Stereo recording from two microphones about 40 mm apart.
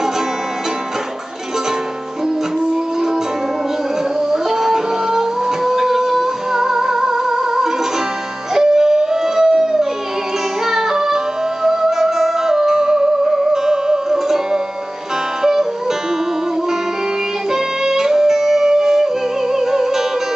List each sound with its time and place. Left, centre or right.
4.3 s music: centre
17.5 s music: centre